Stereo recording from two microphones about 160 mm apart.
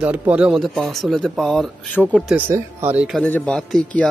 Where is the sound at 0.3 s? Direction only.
5° right (ahead or behind).